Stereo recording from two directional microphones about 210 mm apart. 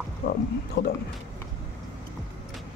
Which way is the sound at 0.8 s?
40° left (ahead or behind).